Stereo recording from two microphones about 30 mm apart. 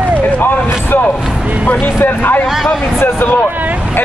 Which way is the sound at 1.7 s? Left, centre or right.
Left.